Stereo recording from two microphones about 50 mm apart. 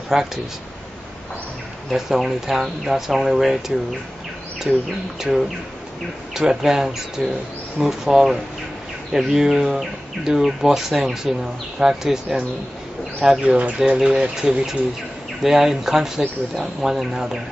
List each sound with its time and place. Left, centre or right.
0.1 s speech: centre
1.9 s speech: centre
6.3 s speech: centre
13.5 s speech: right
14.3 s speech: centre